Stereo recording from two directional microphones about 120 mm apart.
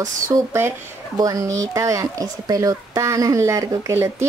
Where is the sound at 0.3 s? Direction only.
20° right (ahead or behind).